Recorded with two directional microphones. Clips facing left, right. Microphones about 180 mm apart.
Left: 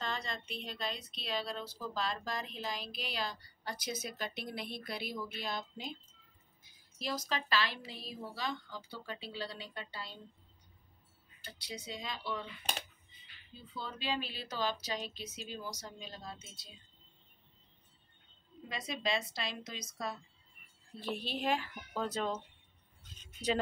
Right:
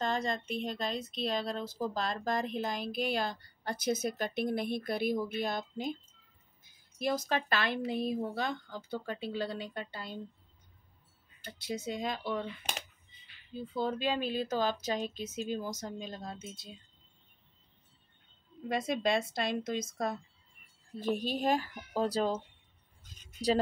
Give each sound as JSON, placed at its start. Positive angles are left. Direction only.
{"t": 0.0, "sound": "a woman's voice", "side_deg": -45}
{"t": 11.6, "sound": "a woman's voice", "side_deg": -50}
{"t": 13.6, "sound": "a woman's voice", "side_deg": -50}
{"t": 18.7, "sound": "a woman's voice", "side_deg": -50}